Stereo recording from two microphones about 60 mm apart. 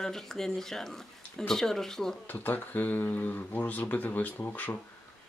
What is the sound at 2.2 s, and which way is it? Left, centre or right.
Speech, left.